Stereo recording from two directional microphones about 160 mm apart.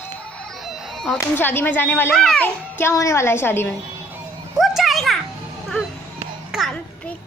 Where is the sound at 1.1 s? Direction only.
10° left (ahead or behind).